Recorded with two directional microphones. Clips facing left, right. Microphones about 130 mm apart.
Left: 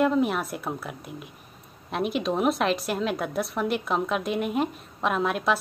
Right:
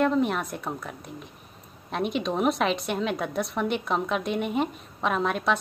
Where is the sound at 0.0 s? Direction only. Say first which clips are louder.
Left 1 dB; 5° left (ahead or behind).